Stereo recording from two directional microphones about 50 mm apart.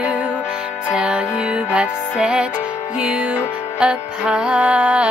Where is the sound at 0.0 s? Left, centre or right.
Right.